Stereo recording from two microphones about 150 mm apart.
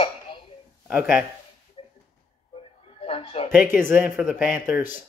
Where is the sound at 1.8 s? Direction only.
40° left (ahead or behind).